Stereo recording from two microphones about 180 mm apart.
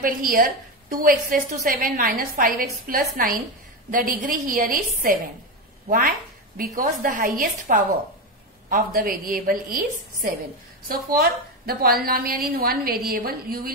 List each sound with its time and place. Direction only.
0.0 s a woman's voice: 50° right (ahead or behind)
11.6 s a woman's voice: 55° right (ahead or behind)